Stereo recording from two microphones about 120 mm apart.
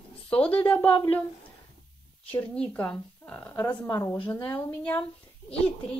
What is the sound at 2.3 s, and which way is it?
Speech, 10° left (ahead or behind).